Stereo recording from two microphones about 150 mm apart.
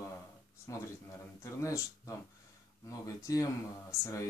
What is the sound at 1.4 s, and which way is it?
Speech, 20° left (ahead or behind).